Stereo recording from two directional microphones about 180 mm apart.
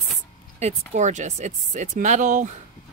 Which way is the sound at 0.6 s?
40° right (ahead or behind).